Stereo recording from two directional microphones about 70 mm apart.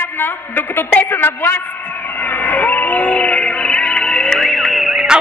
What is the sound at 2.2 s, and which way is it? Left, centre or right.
Music, left.